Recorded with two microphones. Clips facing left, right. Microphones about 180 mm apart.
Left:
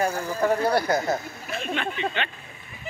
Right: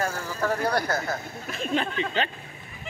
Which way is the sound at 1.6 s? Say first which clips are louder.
Right 4 dB; 35° right (ahead or behind).